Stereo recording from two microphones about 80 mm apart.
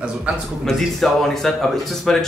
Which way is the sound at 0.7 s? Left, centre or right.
Centre.